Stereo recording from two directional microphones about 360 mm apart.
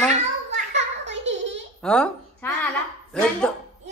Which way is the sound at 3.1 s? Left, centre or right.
Centre.